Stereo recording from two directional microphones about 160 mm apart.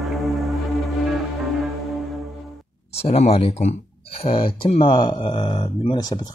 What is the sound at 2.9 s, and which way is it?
Speech, 40° left (ahead or behind).